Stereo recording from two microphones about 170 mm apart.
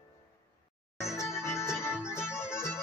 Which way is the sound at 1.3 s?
15° left (ahead or behind).